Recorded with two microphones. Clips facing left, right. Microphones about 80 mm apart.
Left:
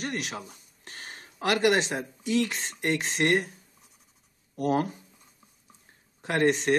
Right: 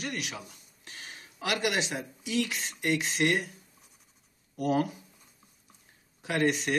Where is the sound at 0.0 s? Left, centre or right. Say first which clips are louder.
Left 3 dB; left.